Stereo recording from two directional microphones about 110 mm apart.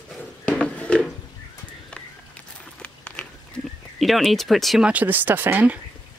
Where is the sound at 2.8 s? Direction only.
10° left (ahead or behind).